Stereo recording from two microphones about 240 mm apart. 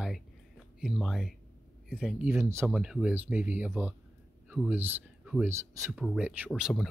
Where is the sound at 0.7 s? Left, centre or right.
Centre.